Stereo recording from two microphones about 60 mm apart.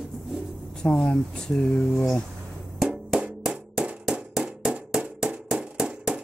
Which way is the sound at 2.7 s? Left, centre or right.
Centre.